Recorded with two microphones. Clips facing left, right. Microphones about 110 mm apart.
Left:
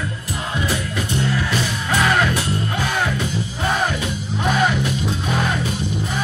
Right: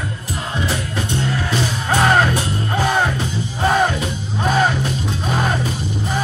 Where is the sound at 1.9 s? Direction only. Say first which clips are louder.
Right 3 dB; 40° right (ahead or behind).